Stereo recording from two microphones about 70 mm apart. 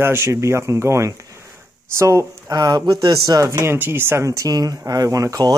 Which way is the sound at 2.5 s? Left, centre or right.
Right.